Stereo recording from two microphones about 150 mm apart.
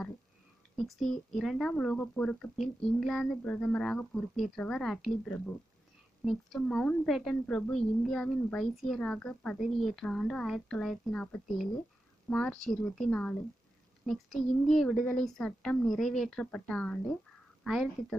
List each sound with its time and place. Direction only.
0.7 s a woman's voice: centre (ahead or behind)